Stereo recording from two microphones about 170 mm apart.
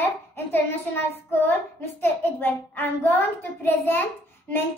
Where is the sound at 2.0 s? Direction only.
10° left (ahead or behind).